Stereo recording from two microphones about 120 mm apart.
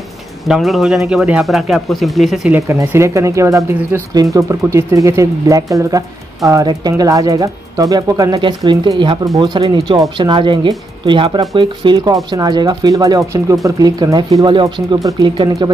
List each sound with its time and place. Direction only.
0.5 s speech: centre (ahead or behind)
2.5 s speech: 20° right (ahead or behind)
8.4 s speech: 40° right (ahead or behind)